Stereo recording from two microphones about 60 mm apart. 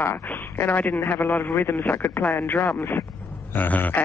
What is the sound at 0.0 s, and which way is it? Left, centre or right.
Speech, left.